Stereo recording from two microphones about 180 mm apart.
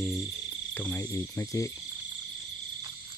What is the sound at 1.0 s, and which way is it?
Cricket, 15° left (ahead or behind).